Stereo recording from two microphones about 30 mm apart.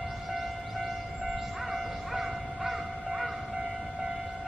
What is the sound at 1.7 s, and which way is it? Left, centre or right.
Music, centre.